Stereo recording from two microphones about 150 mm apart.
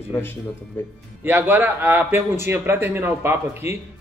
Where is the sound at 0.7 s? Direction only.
15° left (ahead or behind).